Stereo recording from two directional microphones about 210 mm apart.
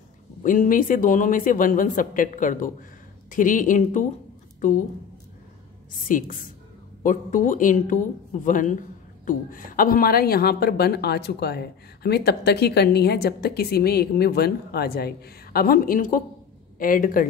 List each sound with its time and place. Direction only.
0.4 s speech: 40° left (ahead or behind)
6.0 s a woman's voice: 40° left (ahead or behind)